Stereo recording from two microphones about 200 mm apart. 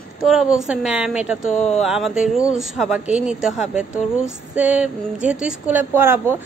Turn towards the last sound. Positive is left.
turn(degrees=-10)  # may be behind; listen again after turning